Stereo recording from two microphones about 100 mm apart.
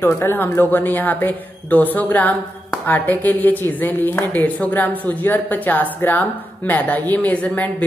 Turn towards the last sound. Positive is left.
turn(degrees=15)  # may be behind; listen again after turning